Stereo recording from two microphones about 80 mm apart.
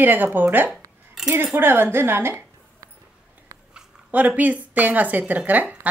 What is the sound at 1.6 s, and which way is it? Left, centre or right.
Speech, right.